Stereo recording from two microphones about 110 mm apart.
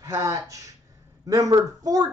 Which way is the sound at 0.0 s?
30° right (ahead or behind).